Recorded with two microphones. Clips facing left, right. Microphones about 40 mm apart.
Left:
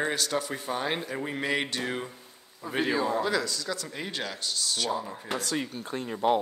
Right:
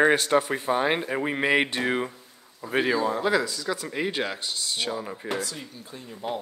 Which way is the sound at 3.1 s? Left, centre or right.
Centre.